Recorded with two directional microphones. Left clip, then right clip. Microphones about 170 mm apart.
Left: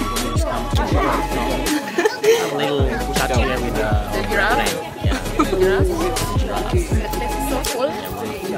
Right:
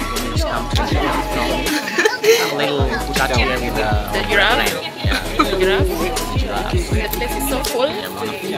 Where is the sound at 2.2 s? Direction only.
65° left (ahead or behind).